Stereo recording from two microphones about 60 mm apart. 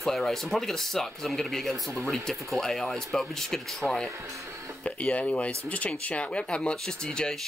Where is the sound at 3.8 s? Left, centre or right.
Right.